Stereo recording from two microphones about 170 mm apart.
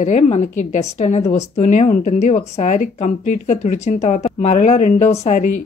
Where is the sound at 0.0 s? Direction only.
45° left (ahead or behind).